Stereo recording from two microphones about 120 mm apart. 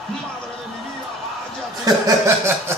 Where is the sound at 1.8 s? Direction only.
25° right (ahead or behind).